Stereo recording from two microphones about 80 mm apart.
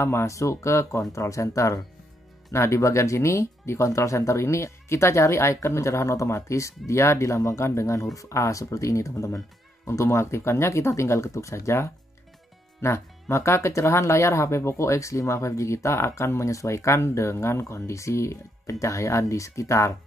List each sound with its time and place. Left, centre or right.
0.0 s speech: left